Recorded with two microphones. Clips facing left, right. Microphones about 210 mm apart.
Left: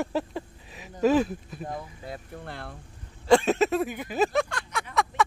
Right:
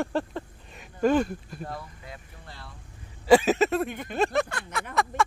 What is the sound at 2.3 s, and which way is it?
Speech, 60° left (ahead or behind).